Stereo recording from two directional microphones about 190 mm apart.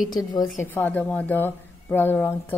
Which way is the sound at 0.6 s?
10° left (ahead or behind).